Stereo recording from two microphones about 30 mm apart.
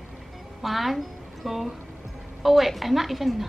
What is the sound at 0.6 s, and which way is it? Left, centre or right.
A woman's voice, centre.